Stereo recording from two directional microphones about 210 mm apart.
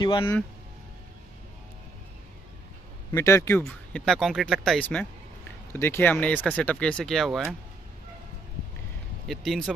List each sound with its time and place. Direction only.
0.0 s speech: 20° left (ahead or behind)
3.1 s speech: 10° left (ahead or behind)
9.3 s speech: centre (ahead or behind)